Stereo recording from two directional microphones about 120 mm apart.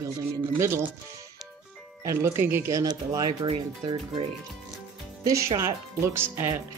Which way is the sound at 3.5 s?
50° right (ahead or behind).